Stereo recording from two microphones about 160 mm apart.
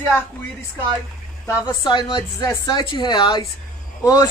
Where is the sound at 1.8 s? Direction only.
30° left (ahead or behind).